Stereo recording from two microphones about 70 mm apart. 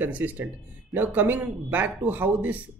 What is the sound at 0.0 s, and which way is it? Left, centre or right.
Speech, right.